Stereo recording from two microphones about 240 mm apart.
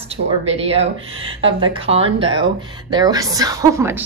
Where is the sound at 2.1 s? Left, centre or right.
Right.